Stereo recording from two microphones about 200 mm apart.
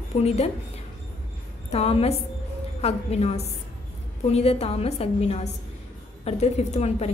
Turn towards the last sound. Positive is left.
turn(degrees=30)  # may be behind; listen again after turning